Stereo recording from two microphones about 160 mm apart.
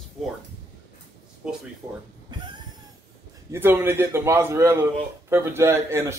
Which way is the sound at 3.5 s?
15° right (ahead or behind).